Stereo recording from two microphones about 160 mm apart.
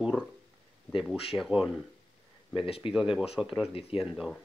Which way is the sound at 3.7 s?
35° left (ahead or behind).